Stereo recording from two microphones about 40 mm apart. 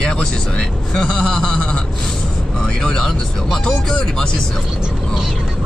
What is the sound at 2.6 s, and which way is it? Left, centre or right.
Speech, centre.